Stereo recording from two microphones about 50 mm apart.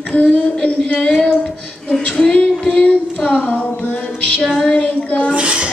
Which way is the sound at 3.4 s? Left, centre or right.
Left.